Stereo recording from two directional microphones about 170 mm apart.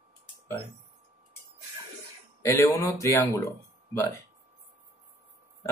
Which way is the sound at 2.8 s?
15° left (ahead or behind).